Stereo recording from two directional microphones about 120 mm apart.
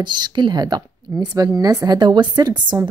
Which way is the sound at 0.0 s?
40° right (ahead or behind).